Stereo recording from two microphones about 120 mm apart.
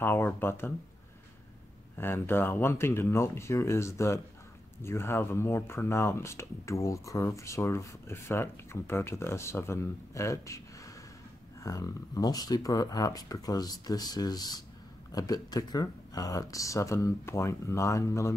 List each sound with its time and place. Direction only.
0.0 s speech: 20° left (ahead or behind)
2.0 s speech: 20° left (ahead or behind)
11.6 s speech: 30° left (ahead or behind)